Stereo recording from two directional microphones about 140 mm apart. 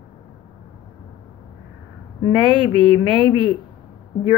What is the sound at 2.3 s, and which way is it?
Speech, 35° right (ahead or behind).